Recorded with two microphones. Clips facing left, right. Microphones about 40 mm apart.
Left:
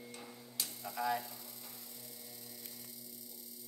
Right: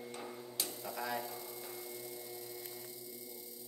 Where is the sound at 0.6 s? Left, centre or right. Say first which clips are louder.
Left 3 dB; centre.